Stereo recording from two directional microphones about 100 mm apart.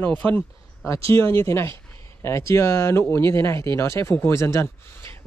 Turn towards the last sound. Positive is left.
turn(degrees=25)  # may be behind; listen again after turning